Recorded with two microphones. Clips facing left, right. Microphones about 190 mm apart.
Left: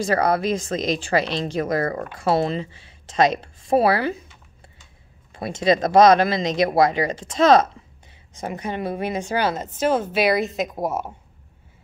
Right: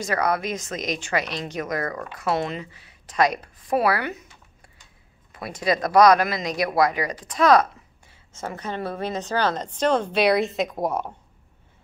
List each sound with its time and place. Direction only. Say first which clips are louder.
0.0 s a woman's voice: left 4 dB; 30° left (ahead or behind)
5.3 s a woman's voice: left 5 dB; 25° left (ahead or behind); by 11.1 s 5° left (ahead or behind)